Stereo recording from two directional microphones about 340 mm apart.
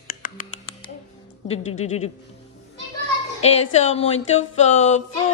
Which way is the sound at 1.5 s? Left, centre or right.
Centre.